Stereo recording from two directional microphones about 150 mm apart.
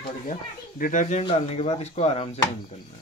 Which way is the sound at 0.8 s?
55° left (ahead or behind).